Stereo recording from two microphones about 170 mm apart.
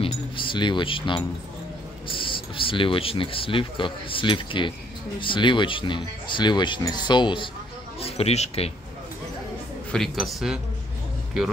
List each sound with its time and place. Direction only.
0.0 s speech: 30° left (ahead or behind)
9.9 s speech: centre (ahead or behind)